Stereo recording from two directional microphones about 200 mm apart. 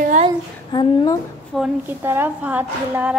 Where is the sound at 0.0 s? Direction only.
35° right (ahead or behind).